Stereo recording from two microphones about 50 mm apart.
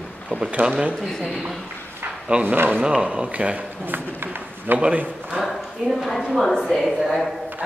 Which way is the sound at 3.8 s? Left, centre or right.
Right.